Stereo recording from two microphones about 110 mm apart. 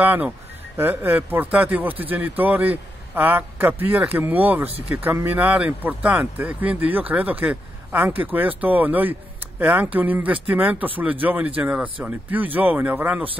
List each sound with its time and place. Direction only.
0.0 s speech: 15° right (ahead or behind)